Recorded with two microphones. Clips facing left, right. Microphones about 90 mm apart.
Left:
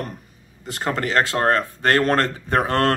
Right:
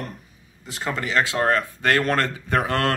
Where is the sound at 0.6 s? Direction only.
45° left (ahead or behind).